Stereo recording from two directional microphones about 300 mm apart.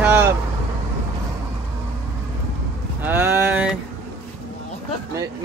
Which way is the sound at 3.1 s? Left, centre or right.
Centre.